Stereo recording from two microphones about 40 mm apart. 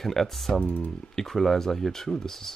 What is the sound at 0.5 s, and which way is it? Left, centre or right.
Speech, left.